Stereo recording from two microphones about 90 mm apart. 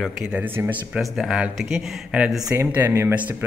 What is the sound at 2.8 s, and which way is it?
Speech, 30° right (ahead or behind).